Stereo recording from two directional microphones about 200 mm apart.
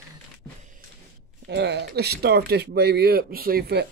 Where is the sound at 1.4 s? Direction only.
60° right (ahead or behind).